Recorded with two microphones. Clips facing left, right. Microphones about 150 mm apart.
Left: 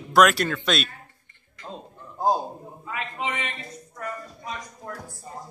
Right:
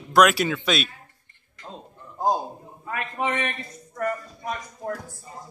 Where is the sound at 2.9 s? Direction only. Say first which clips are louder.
Right 4 dB; 55° right (ahead or behind).